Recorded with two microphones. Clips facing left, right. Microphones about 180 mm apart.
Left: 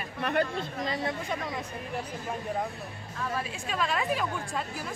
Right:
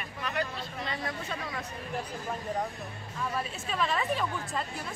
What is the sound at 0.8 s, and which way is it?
Speech, 35° left (ahead or behind).